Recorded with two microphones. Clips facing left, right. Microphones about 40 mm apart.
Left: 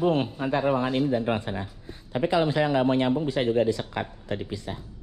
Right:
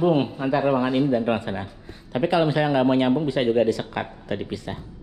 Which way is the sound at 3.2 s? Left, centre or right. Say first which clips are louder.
Right 3 dB; right.